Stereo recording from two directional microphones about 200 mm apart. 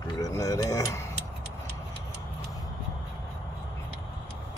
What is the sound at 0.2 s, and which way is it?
Speech, 15° left (ahead or behind).